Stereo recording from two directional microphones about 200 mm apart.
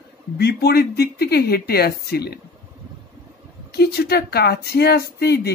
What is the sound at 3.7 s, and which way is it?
Speech, 55° left (ahead or behind).